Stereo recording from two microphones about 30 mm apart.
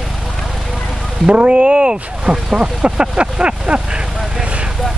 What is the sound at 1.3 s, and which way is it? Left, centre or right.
Speech, right.